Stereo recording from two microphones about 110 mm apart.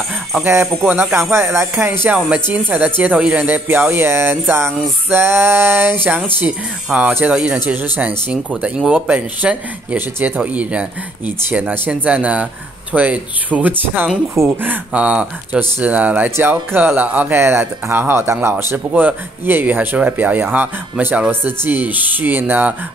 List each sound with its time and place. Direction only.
0.5 s speech: 25° right (ahead or behind)
2.0 s speech: 10° right (ahead or behind)